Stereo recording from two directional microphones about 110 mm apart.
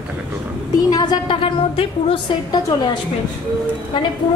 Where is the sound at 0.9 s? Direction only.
35° left (ahead or behind).